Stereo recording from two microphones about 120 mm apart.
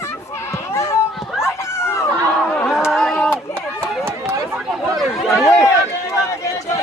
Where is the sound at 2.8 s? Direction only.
Centre (ahead or behind).